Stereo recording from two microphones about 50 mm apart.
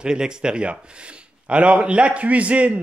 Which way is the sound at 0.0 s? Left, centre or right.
Centre.